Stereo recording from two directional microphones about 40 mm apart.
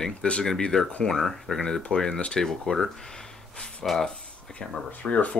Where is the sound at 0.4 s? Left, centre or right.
Centre.